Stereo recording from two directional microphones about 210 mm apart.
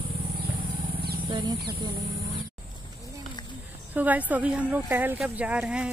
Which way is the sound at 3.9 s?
10° right (ahead or behind).